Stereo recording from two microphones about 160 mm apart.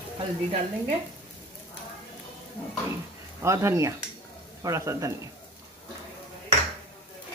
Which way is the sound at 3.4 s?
20° right (ahead or behind).